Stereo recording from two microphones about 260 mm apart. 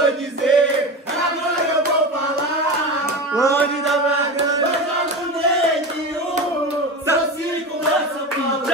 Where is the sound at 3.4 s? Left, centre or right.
Centre.